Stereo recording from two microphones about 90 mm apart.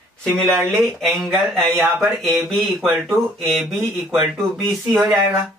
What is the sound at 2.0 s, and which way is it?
Speech, centre (ahead or behind).